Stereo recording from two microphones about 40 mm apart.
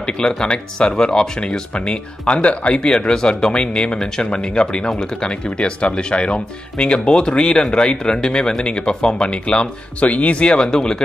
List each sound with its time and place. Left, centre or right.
0.4 s speech: left
2.8 s speech: left
10.0 s speech: left; by 11.1 s centre